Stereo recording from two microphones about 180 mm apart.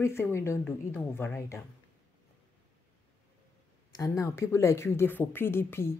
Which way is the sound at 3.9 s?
20° left (ahead or behind).